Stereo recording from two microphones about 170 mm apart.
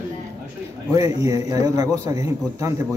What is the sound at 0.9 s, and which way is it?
A man's voice, 20° right (ahead or behind).